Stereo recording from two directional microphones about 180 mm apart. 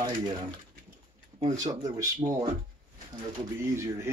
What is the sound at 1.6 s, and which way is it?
Speech, 20° right (ahead or behind).